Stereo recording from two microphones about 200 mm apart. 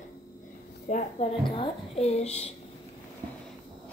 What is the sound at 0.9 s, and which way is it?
Speech, 40° left (ahead or behind).